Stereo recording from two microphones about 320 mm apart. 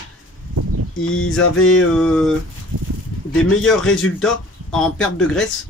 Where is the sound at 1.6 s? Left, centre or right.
Left.